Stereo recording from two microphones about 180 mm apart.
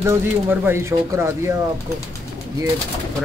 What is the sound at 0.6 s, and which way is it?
Speech, 15° right (ahead or behind).